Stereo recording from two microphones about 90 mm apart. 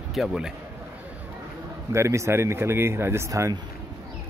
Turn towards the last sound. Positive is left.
turn(degrees=-30)  # may be behind; listen again after turning